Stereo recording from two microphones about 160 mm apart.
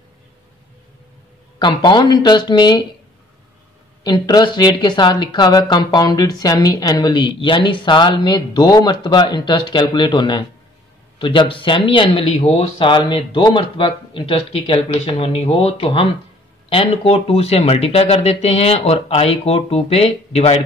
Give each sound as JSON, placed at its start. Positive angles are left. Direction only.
{"t": 1.6, "sound": "speech", "side_deg": 30}
{"t": 4.0, "sound": "speech", "side_deg": 25}